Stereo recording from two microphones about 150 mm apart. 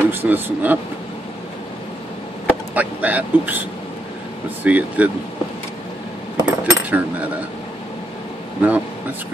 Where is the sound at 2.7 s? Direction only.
10° right (ahead or behind).